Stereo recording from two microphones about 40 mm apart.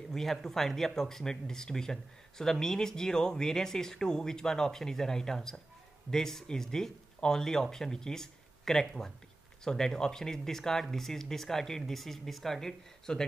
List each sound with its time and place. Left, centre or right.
0.1 s speech: centre